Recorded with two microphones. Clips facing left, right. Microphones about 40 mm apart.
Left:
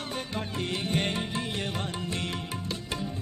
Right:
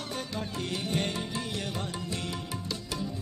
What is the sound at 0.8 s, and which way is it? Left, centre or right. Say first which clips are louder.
Music: left 2 dB; left.